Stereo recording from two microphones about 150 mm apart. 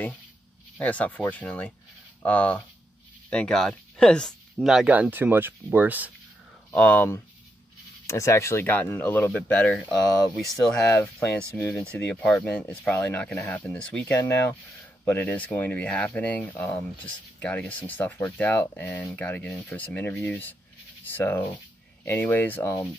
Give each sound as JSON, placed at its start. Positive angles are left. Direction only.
{"t": 0.7, "sound": "speech", "side_deg": 10}
{"t": 6.7, "sound": "speech", "side_deg": 10}
{"t": 10.9, "sound": "speech", "side_deg": 20}
{"t": 11.8, "sound": "speech", "side_deg": 5}